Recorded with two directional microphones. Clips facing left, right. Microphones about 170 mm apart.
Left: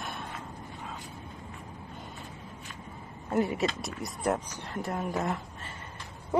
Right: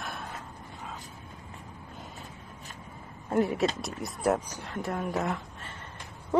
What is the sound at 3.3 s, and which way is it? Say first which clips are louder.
Speech: right 2 dB; centre (ahead or behind).